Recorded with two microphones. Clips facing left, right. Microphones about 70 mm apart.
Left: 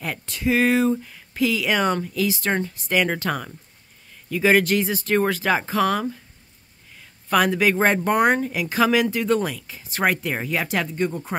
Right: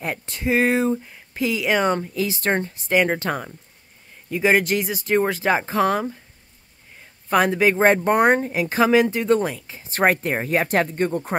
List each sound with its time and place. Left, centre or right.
0.0 s speech: right
7.0 s a sound: right
7.8 s speech: right